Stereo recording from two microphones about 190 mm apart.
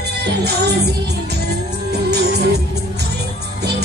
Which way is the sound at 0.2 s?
60° right (ahead or behind).